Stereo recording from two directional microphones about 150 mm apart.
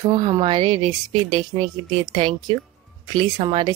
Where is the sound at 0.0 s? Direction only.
30° right (ahead or behind).